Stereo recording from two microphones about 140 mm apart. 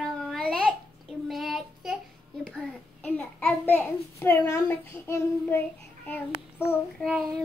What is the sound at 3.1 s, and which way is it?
A child's voice, 10° left (ahead or behind).